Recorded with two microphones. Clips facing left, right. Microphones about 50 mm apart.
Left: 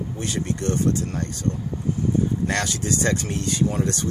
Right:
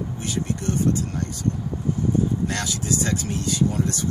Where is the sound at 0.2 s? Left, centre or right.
Left.